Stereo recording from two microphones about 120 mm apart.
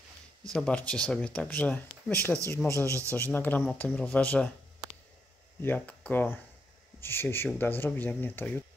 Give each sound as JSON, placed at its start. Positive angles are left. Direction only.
{"t": 0.5, "sound": "speech", "side_deg": 5}
{"t": 2.9, "sound": "a man's voice", "side_deg": -25}
{"t": 3.2, "sound": "speech", "side_deg": 15}
{"t": 5.6, "sound": "speech", "side_deg": 15}